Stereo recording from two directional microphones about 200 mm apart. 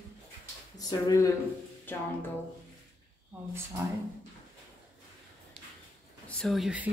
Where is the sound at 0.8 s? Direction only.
15° left (ahead or behind).